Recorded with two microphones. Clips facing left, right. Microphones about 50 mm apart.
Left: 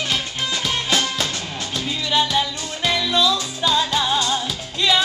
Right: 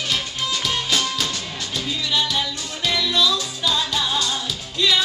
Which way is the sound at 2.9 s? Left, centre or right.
Left.